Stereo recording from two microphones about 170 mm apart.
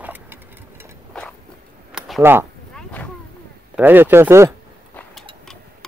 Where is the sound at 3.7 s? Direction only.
10° right (ahead or behind).